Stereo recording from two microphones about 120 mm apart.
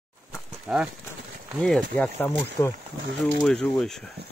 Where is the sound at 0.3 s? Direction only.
10° right (ahead or behind).